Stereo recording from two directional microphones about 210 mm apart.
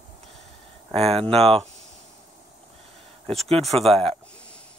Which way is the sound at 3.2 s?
Centre (ahead or behind).